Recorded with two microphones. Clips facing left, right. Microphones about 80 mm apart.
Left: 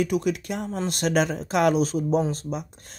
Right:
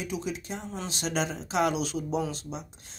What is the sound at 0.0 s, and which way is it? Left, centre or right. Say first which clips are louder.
Speech: left 9 dB; left.